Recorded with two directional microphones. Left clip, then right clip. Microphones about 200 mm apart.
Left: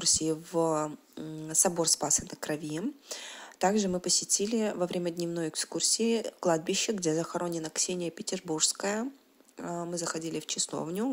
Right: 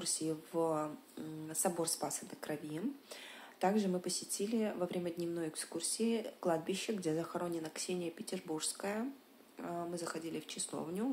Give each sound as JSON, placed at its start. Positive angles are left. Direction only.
{"t": 0.0, "sound": "speech", "side_deg": 50}